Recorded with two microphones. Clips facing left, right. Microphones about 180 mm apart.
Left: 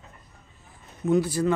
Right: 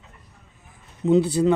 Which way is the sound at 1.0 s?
20° right (ahead or behind).